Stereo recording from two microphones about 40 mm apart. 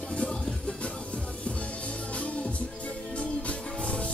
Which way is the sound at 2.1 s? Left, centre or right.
Left.